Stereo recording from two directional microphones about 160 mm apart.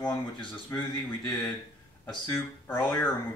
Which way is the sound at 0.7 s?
25° left (ahead or behind).